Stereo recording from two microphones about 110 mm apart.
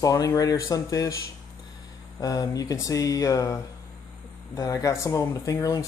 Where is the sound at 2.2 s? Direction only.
35° left (ahead or behind).